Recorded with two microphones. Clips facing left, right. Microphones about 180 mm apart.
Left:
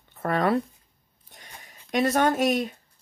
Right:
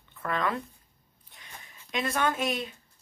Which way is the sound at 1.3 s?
45° left (ahead or behind).